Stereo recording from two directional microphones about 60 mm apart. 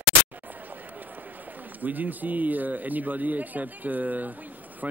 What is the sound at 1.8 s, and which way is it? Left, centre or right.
Speech, right.